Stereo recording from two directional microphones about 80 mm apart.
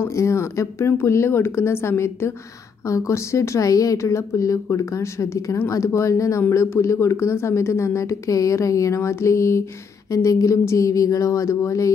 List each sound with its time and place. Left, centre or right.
0.0 s a woman's voice: left